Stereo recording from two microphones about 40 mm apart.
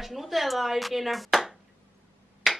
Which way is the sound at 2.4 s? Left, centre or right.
Centre.